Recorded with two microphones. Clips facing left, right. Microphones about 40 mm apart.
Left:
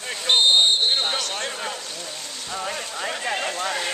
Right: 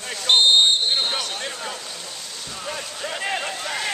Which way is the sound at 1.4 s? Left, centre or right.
Centre.